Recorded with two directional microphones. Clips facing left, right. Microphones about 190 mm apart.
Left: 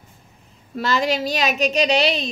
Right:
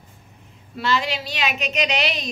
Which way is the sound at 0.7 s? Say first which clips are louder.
Left 3 dB; 45° left (ahead or behind).